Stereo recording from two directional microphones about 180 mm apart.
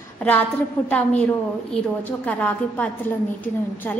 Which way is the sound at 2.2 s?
10° left (ahead or behind).